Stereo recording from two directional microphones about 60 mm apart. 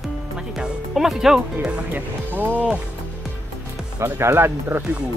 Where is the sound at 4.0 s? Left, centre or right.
Right.